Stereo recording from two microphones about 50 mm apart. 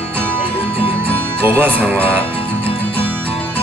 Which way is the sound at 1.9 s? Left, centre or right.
Left.